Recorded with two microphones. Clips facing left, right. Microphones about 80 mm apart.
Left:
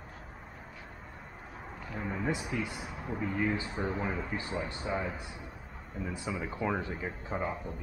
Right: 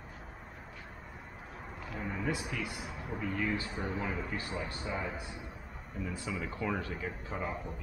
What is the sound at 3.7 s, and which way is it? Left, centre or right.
Speech, centre.